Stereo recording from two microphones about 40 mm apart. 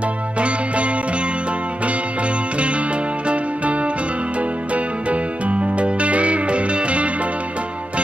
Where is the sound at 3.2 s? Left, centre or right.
Right.